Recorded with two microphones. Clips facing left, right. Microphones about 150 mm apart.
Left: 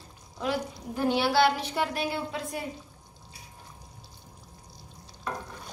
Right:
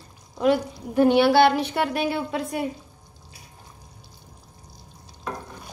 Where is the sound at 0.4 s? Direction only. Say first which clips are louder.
Right 9 dB; 60° right (ahead or behind).